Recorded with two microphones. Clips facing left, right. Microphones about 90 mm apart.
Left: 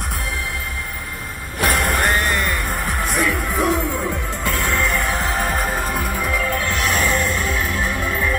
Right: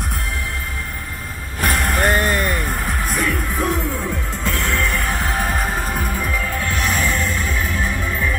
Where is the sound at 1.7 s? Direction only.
55° left (ahead or behind).